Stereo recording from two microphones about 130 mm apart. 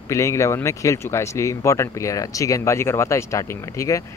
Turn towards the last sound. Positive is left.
turn(degrees=25)  # may be behind; listen again after turning